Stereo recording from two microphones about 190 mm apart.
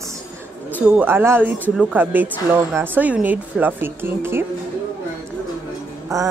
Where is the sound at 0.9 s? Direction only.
10° right (ahead or behind).